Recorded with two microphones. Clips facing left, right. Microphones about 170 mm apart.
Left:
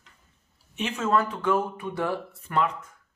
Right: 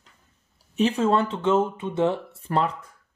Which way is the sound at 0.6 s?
35° right (ahead or behind).